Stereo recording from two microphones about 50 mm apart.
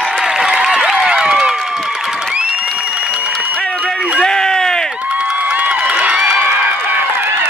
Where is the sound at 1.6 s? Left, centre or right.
Centre.